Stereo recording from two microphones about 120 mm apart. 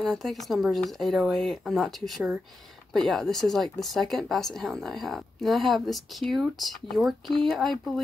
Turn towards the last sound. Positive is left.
turn(degrees=0)  # may be behind; listen again after turning